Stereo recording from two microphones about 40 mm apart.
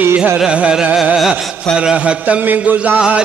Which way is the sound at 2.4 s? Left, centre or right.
Right.